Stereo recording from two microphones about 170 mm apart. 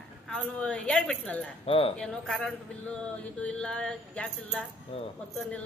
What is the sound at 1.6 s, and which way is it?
Speech, 30° left (ahead or behind).